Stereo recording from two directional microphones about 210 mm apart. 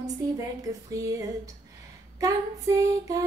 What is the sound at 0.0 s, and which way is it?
Speech, 15° right (ahead or behind).